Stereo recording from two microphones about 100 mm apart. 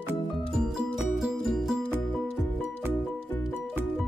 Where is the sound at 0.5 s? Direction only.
5° right (ahead or behind).